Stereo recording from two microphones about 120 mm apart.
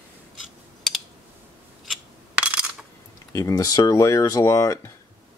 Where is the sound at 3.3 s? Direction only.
30° left (ahead or behind).